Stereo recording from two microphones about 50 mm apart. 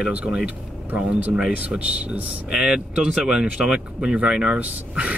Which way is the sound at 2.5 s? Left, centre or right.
Centre.